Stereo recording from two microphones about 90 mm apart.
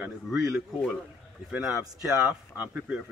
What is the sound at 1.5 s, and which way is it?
Speech, 5° right (ahead or behind).